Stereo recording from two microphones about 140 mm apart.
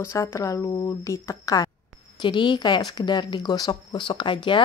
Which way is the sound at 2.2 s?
35° left (ahead or behind).